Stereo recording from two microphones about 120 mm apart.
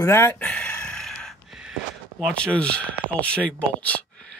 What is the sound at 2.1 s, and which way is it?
Speech, 5° left (ahead or behind).